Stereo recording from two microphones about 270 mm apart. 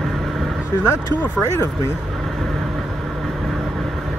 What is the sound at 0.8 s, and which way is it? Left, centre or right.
Speech, centre.